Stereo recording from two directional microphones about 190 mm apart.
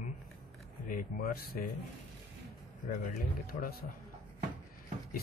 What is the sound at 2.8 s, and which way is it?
Speech, 50° left (ahead or behind).